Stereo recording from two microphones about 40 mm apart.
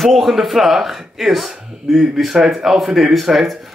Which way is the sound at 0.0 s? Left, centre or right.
Centre.